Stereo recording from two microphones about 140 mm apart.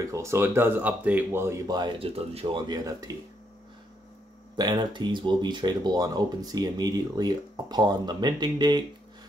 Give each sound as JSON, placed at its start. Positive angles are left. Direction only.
{"t": 0.0, "sound": "speech", "side_deg": -20}
{"t": 1.7, "sound": "speech", "side_deg": -35}
{"t": 4.6, "sound": "speech", "side_deg": -30}